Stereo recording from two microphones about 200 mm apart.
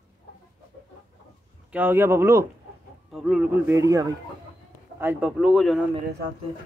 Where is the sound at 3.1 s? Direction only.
Centre (ahead or behind).